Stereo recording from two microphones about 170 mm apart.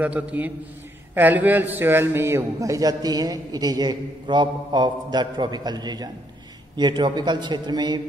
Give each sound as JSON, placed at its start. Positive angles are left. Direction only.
{"t": 0.0, "sound": "a man's voice", "side_deg": -10}